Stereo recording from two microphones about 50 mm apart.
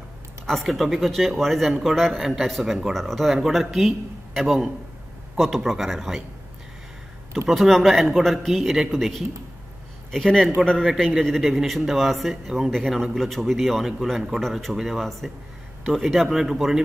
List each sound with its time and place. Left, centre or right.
0.5 s a man's voice: centre
7.4 s a man's voice: centre